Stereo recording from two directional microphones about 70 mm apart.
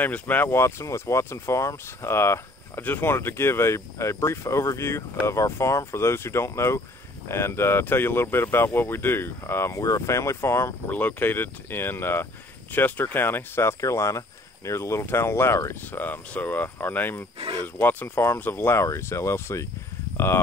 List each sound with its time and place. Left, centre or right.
0.0 s speech: left
0.6 s speech: left
10.9 s speech: left